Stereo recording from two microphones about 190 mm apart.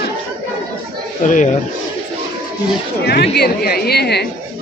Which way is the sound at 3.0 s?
60° left (ahead or behind).